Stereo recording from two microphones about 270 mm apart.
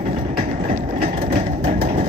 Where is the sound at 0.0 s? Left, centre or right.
Right.